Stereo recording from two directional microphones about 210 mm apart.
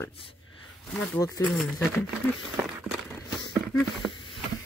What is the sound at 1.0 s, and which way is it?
Speech, 10° left (ahead or behind).